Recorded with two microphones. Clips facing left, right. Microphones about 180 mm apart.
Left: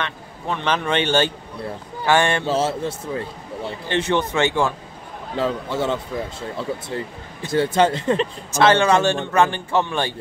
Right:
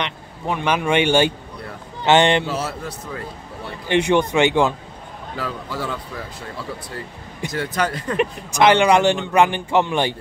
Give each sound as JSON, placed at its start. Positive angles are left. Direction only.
{"t": 0.0, "sound": "a man's voice", "side_deg": -15}
{"t": 2.4, "sound": "a man's voice", "side_deg": 25}
{"t": 3.9, "sound": "a man's voice", "side_deg": -15}
{"t": 5.3, "sound": "a man's voice", "side_deg": 25}
{"t": 7.4, "sound": "a man's voice", "side_deg": 30}
{"t": 8.2, "sound": "a man's voice", "side_deg": -15}